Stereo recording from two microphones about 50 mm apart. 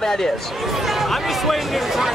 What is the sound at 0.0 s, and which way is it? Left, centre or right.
Speech, centre.